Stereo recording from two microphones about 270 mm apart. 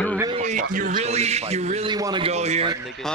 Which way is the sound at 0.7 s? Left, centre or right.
Right.